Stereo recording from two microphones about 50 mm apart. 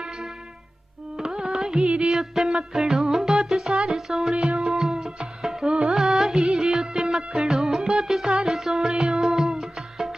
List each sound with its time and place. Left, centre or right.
1.1 s music: centre